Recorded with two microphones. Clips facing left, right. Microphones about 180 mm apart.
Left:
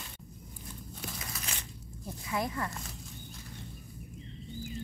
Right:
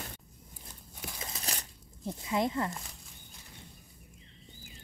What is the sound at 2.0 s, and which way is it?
Speech, 20° right (ahead or behind).